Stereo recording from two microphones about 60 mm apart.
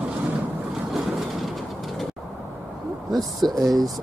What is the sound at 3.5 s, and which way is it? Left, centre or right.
Speech, right.